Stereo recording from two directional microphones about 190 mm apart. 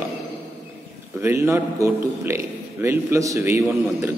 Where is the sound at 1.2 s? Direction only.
10° right (ahead or behind).